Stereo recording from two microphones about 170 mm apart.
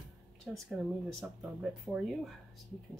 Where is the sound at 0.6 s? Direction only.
5° right (ahead or behind).